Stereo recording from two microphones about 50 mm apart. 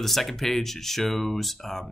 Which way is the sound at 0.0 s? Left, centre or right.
Centre.